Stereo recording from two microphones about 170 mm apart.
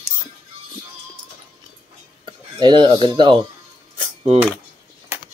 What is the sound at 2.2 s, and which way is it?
Speech, 25° right (ahead or behind).